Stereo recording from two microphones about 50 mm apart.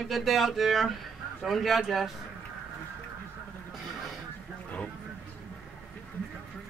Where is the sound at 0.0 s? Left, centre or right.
Centre.